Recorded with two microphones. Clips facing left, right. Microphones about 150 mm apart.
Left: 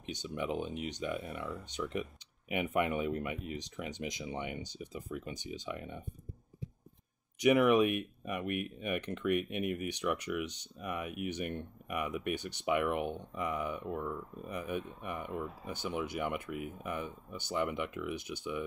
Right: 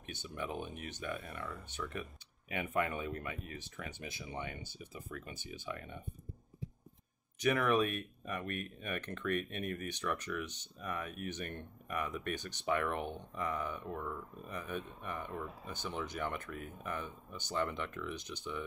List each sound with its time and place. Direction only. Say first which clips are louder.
0.0 s speech: left 5 dB; 15° left (ahead or behind)
7.3 s speech: left 5 dB; 15° left (ahead or behind)